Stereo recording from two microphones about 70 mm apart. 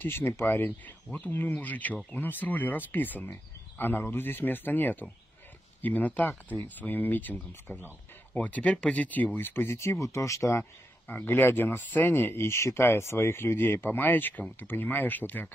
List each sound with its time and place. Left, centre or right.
0.0 s speech: left
9.8 s speech: left
11.1 s speech: left